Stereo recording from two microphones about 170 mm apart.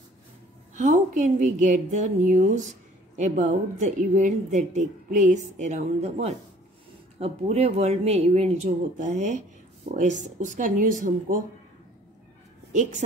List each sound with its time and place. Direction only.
0.7 s speech: 45° right (ahead or behind)